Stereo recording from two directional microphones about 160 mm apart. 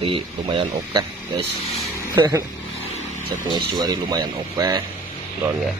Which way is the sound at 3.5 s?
25° right (ahead or behind).